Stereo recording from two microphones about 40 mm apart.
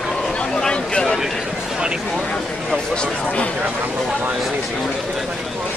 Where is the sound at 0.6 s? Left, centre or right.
Left.